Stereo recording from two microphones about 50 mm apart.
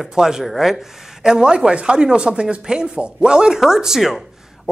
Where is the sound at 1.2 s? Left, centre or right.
Centre.